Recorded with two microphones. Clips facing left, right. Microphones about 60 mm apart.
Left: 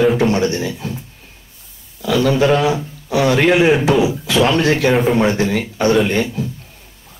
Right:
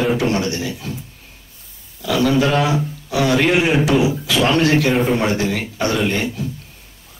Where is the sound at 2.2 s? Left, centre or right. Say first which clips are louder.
Left 2 dB; left.